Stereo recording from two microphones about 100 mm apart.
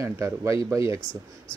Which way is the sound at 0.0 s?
30° right (ahead or behind).